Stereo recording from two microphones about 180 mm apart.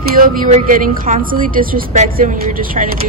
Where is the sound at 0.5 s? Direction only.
50° right (ahead or behind).